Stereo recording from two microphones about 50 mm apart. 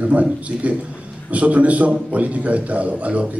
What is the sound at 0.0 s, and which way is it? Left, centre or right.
A man's voice, right.